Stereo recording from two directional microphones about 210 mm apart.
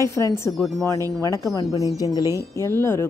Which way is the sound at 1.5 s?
15° left (ahead or behind).